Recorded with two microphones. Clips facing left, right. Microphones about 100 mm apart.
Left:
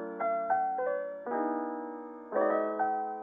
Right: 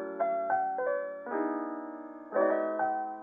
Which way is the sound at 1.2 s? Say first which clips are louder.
Left 2 dB; 35° left (ahead or behind).